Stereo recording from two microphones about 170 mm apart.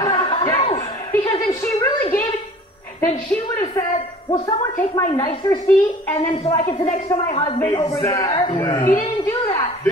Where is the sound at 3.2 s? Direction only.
10° left (ahead or behind).